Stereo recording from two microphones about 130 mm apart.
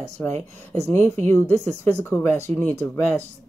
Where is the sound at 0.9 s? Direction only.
20° left (ahead or behind).